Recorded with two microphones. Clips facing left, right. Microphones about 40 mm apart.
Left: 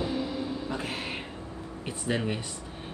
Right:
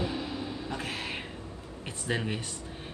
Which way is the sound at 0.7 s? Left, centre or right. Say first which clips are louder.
Left 2 dB; left.